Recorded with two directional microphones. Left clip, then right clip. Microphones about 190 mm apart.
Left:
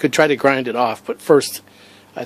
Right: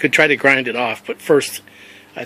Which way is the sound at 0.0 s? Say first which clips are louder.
Right 1 dB; 15° left (ahead or behind).